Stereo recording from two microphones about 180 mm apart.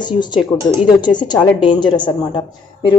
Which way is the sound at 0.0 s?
25° left (ahead or behind).